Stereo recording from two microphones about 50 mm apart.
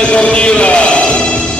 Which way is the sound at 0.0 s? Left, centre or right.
Left.